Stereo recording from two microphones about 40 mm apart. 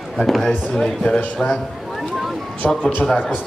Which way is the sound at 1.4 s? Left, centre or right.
Centre.